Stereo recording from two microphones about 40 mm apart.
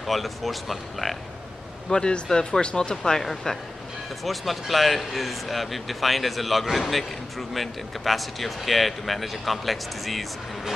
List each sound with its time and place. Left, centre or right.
0.0 s a man's voice: centre
1.9 s a man's voice: left
2.2 s speech: centre
2.6 s a man's voice: left; by 10.2 s centre